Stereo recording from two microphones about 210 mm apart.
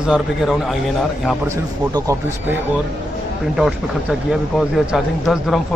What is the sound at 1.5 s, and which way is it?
Speech, 15° right (ahead or behind).